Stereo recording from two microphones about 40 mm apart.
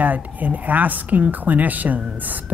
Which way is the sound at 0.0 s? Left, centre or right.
Right.